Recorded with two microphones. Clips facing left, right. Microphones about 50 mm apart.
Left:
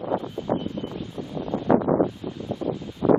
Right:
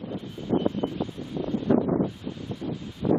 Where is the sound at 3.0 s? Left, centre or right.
Left.